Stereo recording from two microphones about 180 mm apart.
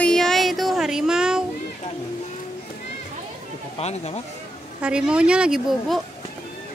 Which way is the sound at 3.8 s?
35° left (ahead or behind).